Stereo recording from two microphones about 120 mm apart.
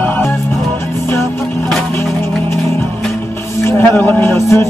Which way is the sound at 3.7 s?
20° left (ahead or behind).